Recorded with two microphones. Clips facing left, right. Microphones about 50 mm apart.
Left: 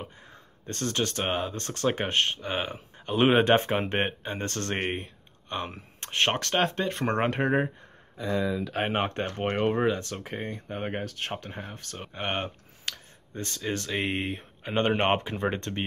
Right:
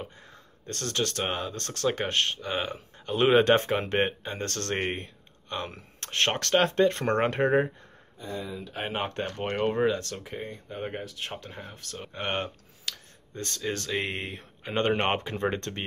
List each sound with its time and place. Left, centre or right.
0.0 s speech: left; by 7.7 s centre
8.8 s speech: left
10.1 s speech: left
11.3 s speech: left
12.0 s speech: centre